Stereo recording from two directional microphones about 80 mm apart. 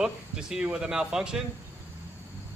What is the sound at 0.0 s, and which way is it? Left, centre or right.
Speech, centre.